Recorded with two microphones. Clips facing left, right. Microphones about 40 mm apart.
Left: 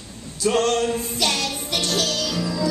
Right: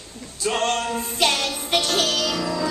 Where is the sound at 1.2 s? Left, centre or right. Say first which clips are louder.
Right 5 dB; right.